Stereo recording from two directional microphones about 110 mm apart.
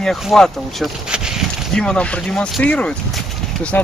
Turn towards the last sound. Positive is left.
turn(degrees=15)  # may be behind; listen again after turning